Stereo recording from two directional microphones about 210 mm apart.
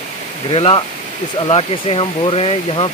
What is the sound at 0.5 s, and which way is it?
Speech, 25° left (ahead or behind).